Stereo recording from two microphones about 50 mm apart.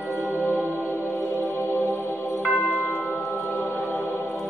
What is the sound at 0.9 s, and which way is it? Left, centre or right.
Music, left.